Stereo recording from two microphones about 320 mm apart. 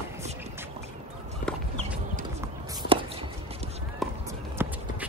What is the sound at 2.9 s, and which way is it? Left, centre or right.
Chopping, centre.